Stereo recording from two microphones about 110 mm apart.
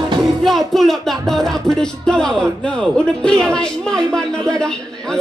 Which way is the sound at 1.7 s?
5° left (ahead or behind).